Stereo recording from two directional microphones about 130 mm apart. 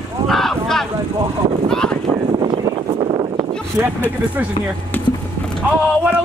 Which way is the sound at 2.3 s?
35° right (ahead or behind).